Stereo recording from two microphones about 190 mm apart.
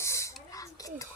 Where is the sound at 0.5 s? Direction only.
15° left (ahead or behind).